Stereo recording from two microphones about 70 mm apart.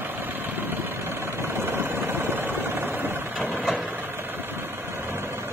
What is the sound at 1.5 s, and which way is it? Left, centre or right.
Vehicle, right.